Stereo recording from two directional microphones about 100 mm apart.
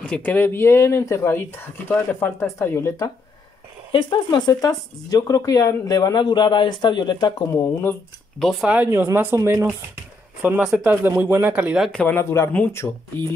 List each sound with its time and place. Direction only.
0.0 s speech: 10° left (ahead or behind); by 2.9 s 25° left (ahead or behind)
3.9 s speech: 50° left (ahead or behind)
6.2 s a man's voice: 50° left (ahead or behind)
8.4 s speech: centre (ahead or behind)
8.6 s speech: 15° right (ahead or behind)
10.4 s a man's voice: 10° right (ahead or behind)
11.9 s speech: 10° left (ahead or behind)
12.2 s speech: 25° left (ahead or behind)